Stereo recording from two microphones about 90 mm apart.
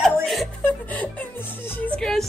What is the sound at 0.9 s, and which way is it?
Music, 20° left (ahead or behind).